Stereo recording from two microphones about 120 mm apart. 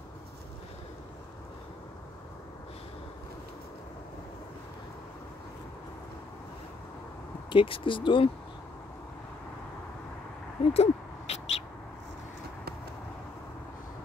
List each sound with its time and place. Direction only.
7.4 s speech: 45° left (ahead or behind)
10.7 s owl: 65° left (ahead or behind)